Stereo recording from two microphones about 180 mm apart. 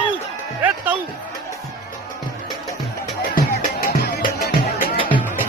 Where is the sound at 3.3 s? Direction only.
55° left (ahead or behind).